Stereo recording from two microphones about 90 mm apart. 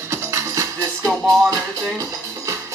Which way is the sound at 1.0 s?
Centre (ahead or behind).